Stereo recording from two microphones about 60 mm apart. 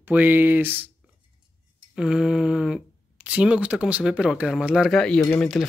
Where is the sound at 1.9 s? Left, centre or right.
Centre.